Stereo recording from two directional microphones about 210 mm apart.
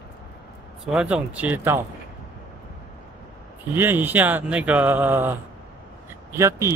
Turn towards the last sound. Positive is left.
turn(degrees=-15)  # may be behind; listen again after turning